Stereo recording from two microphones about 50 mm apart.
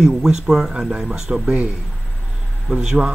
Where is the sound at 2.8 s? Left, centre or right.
Centre.